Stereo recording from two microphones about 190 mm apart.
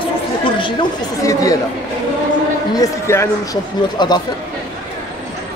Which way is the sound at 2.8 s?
15° left (ahead or behind).